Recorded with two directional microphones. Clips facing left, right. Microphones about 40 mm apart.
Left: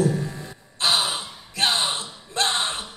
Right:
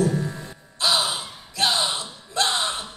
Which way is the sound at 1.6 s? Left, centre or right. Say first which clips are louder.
Even; left.